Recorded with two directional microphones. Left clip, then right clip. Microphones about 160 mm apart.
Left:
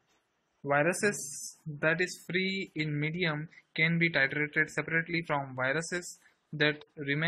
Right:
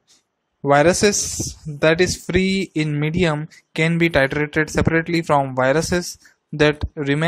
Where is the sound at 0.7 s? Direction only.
40° right (ahead or behind).